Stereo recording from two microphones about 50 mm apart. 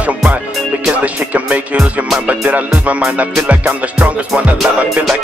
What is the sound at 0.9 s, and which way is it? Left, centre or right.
Music, right.